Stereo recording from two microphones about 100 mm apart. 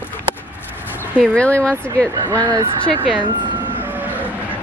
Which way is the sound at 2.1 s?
40° right (ahead or behind).